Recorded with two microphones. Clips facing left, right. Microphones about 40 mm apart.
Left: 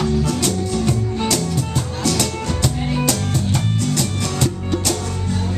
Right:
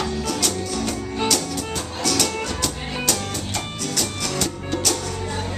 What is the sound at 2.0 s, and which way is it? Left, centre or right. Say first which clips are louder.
Music: left 1 dB; centre.